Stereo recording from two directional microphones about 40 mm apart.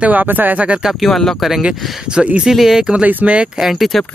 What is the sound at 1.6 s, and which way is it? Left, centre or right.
Speech, right.